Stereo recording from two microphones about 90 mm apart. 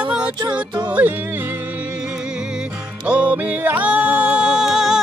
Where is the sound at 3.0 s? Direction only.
15° right (ahead or behind).